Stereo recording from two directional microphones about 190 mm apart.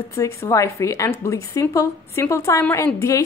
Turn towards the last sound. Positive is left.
turn(degrees=15)  # may be behind; listen again after turning